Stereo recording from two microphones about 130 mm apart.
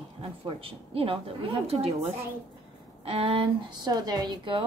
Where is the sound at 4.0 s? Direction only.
30° right (ahead or behind).